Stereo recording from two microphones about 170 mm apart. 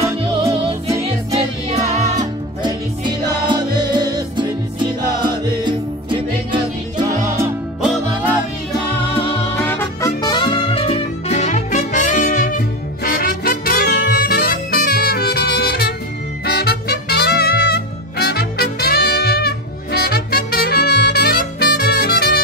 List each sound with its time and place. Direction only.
0.0 s music: 20° right (ahead or behind)
2.1 s music: 25° right (ahead or behind)
9.7 s music: 10° left (ahead or behind)
10.2 s music: 25° left (ahead or behind); by 22.4 s 65° left (ahead or behind)